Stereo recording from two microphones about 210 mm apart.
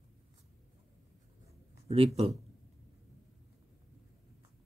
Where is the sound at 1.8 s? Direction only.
30° right (ahead or behind).